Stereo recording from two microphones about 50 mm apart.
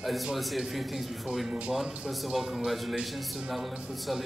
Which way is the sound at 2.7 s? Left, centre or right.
Centre.